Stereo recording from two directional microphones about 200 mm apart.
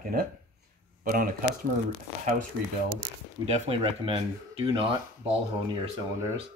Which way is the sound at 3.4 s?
30° right (ahead or behind).